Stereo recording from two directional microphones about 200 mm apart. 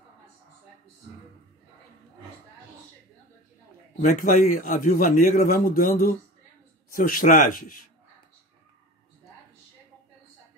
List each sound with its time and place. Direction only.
4.0 s a man's voice: 40° left (ahead or behind)